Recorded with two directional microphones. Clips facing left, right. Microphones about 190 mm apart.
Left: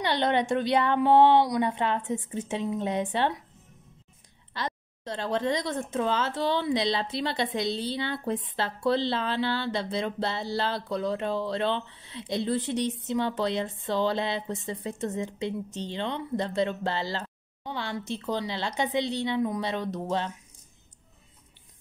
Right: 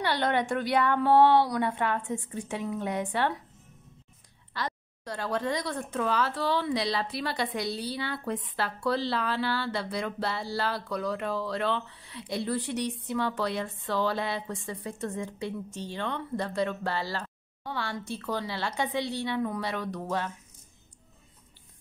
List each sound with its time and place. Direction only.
0.0 s speech: 20° left (ahead or behind)
4.6 s speech: 20° left (ahead or behind)